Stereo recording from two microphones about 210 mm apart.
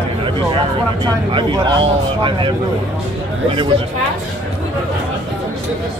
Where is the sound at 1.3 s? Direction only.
25° right (ahead or behind).